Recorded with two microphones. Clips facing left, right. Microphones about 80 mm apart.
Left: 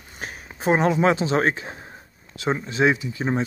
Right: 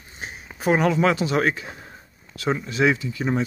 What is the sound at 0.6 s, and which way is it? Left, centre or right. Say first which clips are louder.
Speech: even; left.